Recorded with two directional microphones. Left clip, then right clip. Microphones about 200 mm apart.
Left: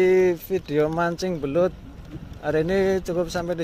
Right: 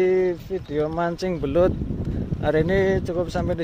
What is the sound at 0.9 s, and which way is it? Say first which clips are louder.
Speech: even; 5° left (ahead or behind).